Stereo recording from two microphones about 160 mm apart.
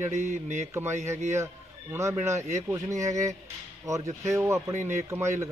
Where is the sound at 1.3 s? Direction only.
15° right (ahead or behind).